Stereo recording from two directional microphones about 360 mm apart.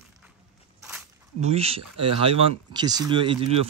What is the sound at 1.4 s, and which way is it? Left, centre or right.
Speech, centre.